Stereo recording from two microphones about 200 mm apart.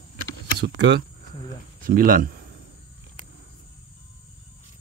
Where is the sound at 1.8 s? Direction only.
45° right (ahead or behind).